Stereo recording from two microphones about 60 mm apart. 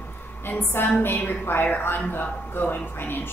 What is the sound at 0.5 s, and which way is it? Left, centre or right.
Speech, left.